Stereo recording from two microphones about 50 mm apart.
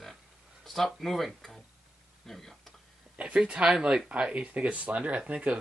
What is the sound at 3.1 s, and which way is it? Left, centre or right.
Speech, right.